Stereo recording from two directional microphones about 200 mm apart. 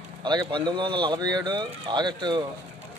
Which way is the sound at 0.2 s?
20° right (ahead or behind).